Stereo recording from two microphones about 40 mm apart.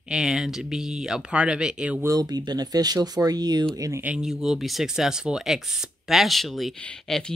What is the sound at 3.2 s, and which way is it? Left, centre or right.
Speech, right.